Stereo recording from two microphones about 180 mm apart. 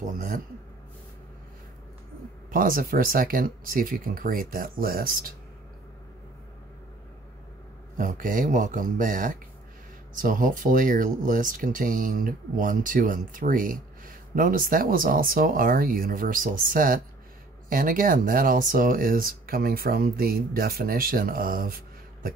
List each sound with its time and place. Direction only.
0.0 s speech: 50° right (ahead or behind)
2.5 s speech: 50° right (ahead or behind)
8.0 s speech: 50° right (ahead or behind)